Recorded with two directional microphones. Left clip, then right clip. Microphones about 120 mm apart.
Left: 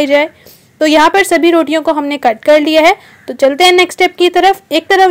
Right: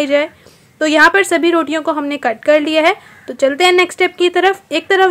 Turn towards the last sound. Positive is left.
turn(degrees=25)  # may be behind; listen again after turning